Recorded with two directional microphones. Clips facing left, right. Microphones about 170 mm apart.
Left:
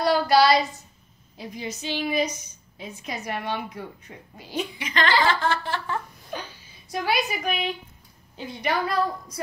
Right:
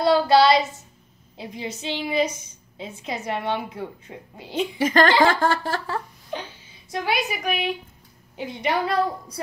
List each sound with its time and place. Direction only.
0.0 s child singing: 25° right (ahead or behind)
1.3 s a woman's voice: 25° right (ahead or behind)
4.7 s a sound: 45° right (ahead or behind)
7.1 s a woman's voice: 10° right (ahead or behind)
8.4 s a woman's voice: 20° right (ahead or behind)